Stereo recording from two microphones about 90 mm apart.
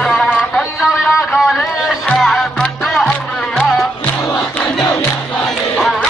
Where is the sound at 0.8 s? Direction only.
5° right (ahead or behind).